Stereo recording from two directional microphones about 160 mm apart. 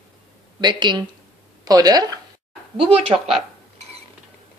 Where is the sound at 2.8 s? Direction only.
40° right (ahead or behind).